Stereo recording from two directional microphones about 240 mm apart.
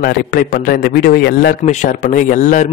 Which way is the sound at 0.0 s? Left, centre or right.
Left.